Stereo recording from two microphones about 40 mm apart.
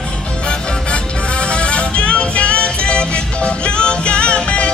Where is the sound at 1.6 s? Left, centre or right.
Left.